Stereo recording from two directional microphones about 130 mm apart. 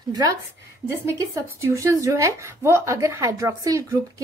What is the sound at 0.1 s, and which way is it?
A woman's voice, 30° right (ahead or behind).